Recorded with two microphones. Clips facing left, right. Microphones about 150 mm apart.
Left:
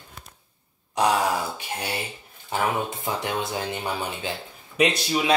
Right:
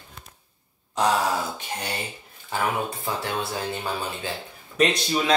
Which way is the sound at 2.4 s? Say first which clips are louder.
Left 1 dB; 20° left (ahead or behind).